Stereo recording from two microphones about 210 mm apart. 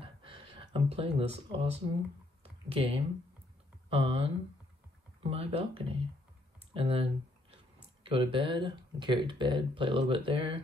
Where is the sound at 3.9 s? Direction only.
30° right (ahead or behind).